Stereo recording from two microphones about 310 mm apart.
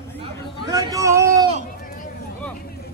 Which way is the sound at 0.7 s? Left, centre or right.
Centre.